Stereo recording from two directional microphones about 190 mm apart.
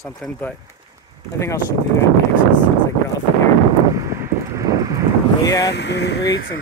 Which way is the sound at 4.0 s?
15° right (ahead or behind).